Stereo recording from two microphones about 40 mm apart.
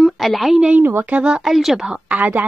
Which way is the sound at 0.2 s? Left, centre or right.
Centre.